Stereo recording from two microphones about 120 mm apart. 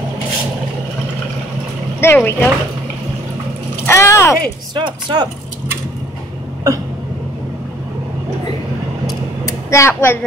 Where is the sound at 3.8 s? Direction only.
20° left (ahead or behind).